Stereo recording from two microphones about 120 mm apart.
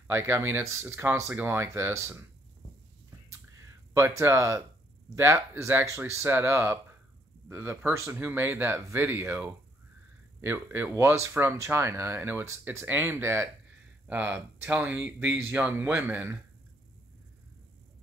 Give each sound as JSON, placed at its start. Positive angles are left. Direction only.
{"t": 0.1, "sound": "speech", "side_deg": -20}
{"t": 3.9, "sound": "speech", "side_deg": -25}